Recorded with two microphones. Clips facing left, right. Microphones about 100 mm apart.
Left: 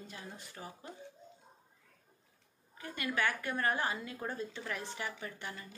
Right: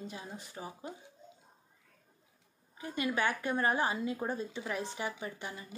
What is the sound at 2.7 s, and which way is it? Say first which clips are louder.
Speech: right 3 dB; 20° right (ahead or behind).